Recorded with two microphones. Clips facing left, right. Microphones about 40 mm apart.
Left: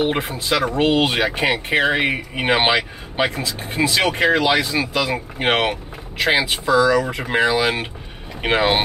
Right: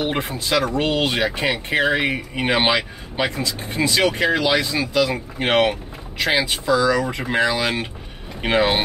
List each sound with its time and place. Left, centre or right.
0.1 s speech: centre